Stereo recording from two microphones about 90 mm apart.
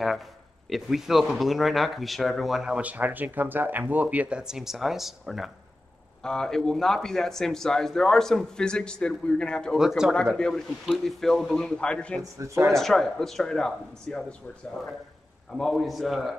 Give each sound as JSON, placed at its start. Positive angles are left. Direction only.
{"t": 0.7, "sound": "speech", "side_deg": 0}
{"t": 9.8, "sound": "speech", "side_deg": -5}
{"t": 10.1, "sound": "speech", "side_deg": 10}
{"t": 12.2, "sound": "speech", "side_deg": -35}
{"t": 12.6, "sound": "speech", "side_deg": 5}
{"t": 15.5, "sound": "speech", "side_deg": 0}